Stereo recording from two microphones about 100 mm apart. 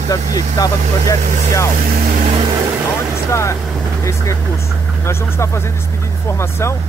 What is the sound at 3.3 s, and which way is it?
Speech, 30° left (ahead or behind).